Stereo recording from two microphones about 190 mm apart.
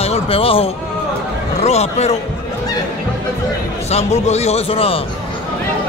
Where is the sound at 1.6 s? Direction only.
35° left (ahead or behind).